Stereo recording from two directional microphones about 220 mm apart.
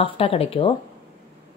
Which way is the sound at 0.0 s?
25° left (ahead or behind).